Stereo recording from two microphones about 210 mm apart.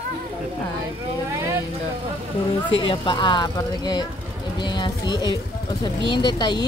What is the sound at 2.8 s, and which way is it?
A woman's voice, 25° left (ahead or behind).